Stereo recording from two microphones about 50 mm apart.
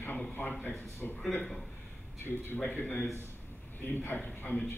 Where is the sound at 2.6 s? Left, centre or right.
Left.